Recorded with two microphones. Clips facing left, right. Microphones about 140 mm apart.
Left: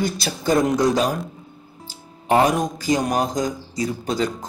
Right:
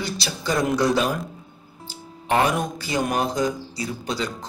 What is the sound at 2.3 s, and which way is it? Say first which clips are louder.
Speech: left 3 dB; 40° left (ahead or behind).